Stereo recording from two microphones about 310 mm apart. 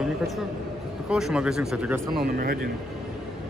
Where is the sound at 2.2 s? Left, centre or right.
Right.